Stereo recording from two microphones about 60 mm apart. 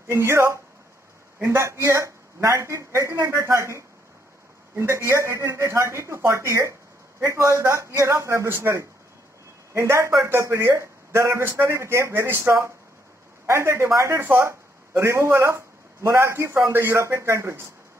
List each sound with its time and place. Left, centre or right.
0.1 s a man's voice: right
2.5 s a man's voice: right
9.8 s a man's voice: right